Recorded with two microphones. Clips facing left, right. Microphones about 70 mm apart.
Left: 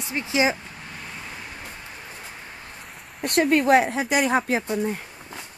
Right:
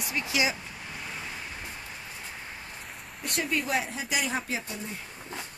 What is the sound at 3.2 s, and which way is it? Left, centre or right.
Speech, left.